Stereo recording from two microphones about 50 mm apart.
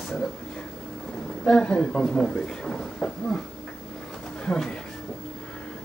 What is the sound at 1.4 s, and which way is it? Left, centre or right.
Speech, centre.